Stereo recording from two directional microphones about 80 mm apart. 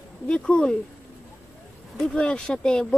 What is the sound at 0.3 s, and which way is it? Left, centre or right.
Speech, centre.